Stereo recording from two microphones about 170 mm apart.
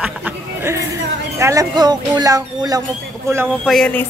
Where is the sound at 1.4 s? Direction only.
20° right (ahead or behind).